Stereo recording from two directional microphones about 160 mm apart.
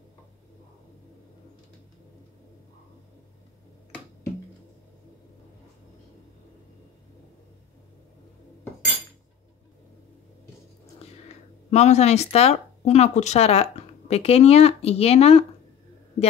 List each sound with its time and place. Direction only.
11.7 s speech: 45° left (ahead or behind)